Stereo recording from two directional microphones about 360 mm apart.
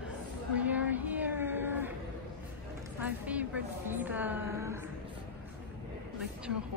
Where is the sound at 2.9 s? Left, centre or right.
Centre.